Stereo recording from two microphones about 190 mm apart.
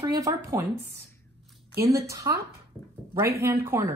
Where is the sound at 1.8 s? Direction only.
15° right (ahead or behind).